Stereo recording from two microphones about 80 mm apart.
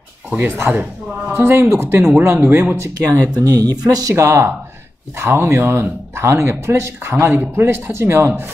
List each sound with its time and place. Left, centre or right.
0.3 s speech: right
3.3 s speech: right
4.1 s speech: right